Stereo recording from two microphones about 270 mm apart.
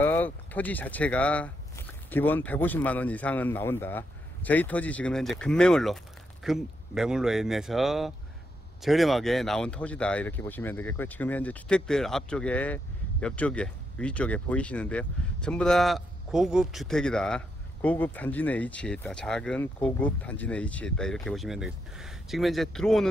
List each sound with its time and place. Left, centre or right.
0.0 s speech: centre